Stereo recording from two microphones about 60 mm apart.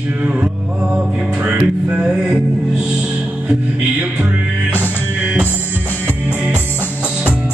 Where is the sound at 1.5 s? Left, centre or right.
Centre.